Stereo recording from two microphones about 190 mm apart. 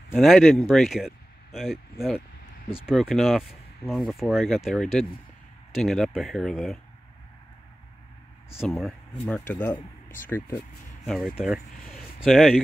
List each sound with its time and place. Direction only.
0.1 s speech: centre (ahead or behind)
8.5 s speech: centre (ahead or behind)
10.0 s a sound: 45° left (ahead or behind)
10.3 s speech: 10° left (ahead or behind)
11.1 s speech: centre (ahead or behind)